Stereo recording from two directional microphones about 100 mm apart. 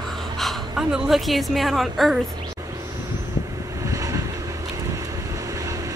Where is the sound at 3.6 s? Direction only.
30° right (ahead or behind).